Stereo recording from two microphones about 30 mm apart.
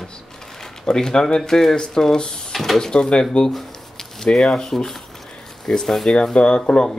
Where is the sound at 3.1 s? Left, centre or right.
Left.